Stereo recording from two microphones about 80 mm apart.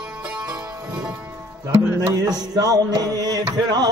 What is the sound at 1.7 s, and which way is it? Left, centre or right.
Music, right.